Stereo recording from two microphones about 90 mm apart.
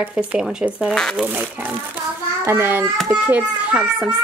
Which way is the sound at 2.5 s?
25° right (ahead or behind).